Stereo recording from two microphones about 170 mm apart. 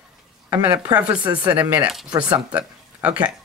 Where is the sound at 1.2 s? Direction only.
25° right (ahead or behind).